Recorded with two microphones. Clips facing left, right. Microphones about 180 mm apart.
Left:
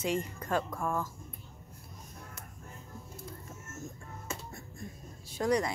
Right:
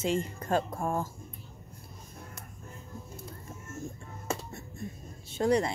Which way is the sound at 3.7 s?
30° right (ahead or behind).